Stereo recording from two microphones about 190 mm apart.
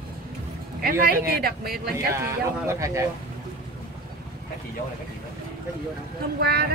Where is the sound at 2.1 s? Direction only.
15° right (ahead or behind).